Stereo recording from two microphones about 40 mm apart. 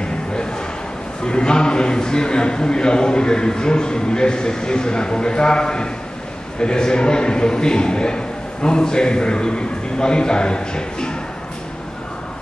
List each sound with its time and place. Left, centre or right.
1.2 s a man's voice: left